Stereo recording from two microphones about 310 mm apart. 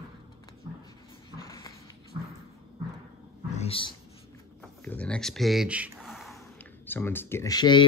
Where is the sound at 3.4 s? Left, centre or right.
Centre.